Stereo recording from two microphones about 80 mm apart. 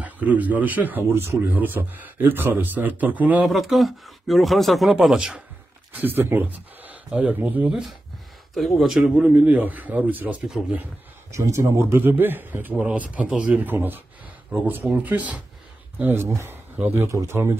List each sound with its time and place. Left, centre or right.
0.0 s speech: centre
3.4 s speech: centre
5.9 s speech: right
8.5 s speech: centre
9.3 s speech: centre
11.3 s speech: right